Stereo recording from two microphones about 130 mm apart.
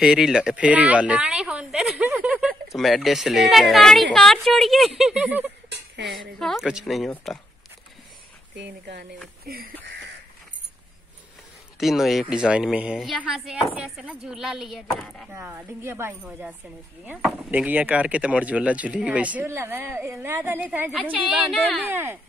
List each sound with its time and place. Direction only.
0.0 s speech: 5° right (ahead or behind)
2.7 s speech: centre (ahead or behind)
6.0 s speech: centre (ahead or behind)
11.8 s speech: centre (ahead or behind)
15.3 s a woman's voice: 20° right (ahead or behind)
21.5 s speech: centre (ahead or behind)
21.8 s speech: 15° right (ahead or behind)